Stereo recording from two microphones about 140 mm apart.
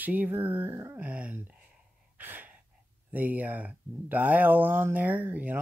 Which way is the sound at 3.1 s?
10° right (ahead or behind).